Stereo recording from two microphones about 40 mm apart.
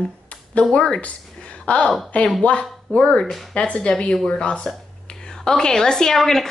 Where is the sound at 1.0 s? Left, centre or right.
Left.